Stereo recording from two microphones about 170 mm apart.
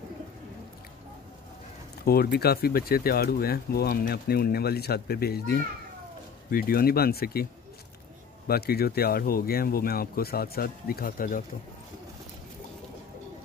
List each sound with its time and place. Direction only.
2.0 s speech: 65° left (ahead or behind)
8.5 s speech: 65° left (ahead or behind)